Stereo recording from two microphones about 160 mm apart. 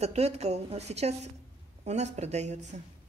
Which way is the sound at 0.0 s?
40° right (ahead or behind).